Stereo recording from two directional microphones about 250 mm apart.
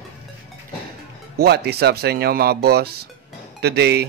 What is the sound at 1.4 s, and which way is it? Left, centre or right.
A man's voice, right.